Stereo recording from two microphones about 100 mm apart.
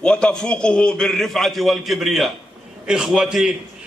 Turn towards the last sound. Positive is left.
turn(degrees=-5)  # may be behind; listen again after turning